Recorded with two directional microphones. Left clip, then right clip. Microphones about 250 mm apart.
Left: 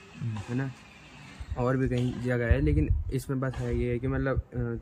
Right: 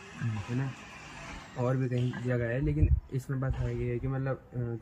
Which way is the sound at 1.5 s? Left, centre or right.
Centre.